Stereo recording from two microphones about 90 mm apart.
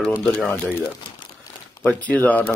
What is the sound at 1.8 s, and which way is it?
Speech, 15° left (ahead or behind).